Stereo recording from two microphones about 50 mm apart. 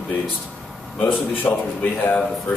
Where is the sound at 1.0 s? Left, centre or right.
Left.